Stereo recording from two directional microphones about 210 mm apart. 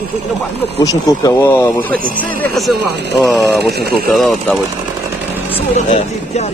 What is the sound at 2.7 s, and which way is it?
Speech, 55° right (ahead or behind).